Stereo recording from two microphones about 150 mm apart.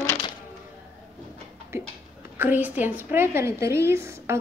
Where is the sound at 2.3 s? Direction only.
15° right (ahead or behind).